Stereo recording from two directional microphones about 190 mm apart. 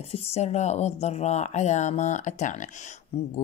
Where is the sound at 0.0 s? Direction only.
30° left (ahead or behind).